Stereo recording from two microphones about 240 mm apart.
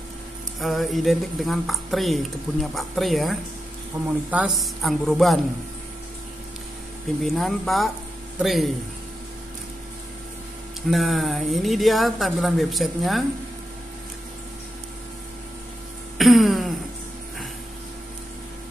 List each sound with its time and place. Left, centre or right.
0.6 s speech: centre
3.9 s speech: centre
7.2 s speech: centre
10.9 s speech: centre
16.2 s a sound: centre